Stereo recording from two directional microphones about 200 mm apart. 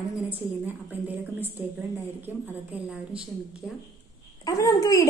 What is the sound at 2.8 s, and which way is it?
Speech, 5° right (ahead or behind).